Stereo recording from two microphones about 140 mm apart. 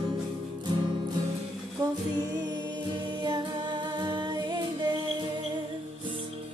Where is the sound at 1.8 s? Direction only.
30° right (ahead or behind).